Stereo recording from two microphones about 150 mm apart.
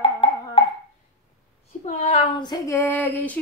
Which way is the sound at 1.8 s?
50° left (ahead or behind).